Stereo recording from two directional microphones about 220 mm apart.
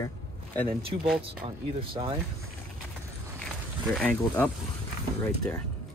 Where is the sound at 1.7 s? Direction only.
25° right (ahead or behind).